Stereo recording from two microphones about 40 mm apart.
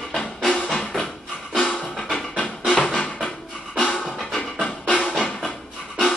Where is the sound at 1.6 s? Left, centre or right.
Left.